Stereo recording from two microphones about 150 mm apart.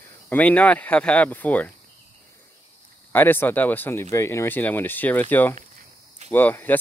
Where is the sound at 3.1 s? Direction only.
15° left (ahead or behind).